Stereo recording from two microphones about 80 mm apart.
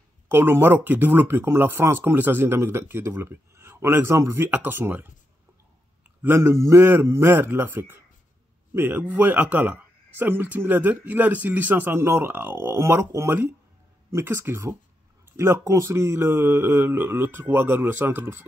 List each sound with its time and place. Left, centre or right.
0.3 s speech: right
6.2 s speech: right